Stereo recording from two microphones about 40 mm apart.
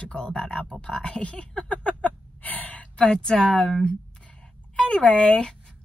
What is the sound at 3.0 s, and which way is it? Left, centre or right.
Speech, centre.